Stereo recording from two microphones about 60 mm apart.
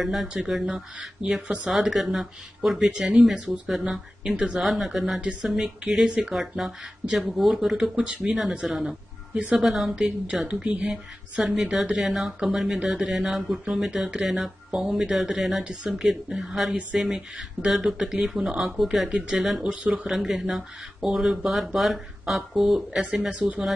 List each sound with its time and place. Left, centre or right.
0.0 s speech: centre
0.9 s speech: centre
4.6 s speech: centre
5.2 s speech: centre
9.3 s speech: right
9.6 s speech: centre
10.5 s speech: right
10.9 s speech: centre
15.6 s speech: centre
15.9 s speech: centre
20.1 s speech: centre
22.8 s speech: right